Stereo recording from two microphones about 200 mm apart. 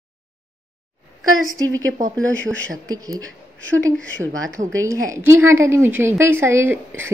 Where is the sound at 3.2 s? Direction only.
70° right (ahead or behind).